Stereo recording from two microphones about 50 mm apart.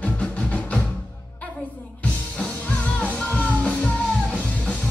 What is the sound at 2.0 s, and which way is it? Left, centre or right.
Music, left.